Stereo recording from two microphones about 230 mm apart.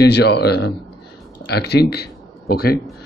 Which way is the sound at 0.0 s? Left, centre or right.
Left.